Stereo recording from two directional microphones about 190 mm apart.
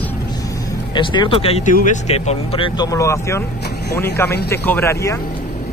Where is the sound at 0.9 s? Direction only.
25° left (ahead or behind).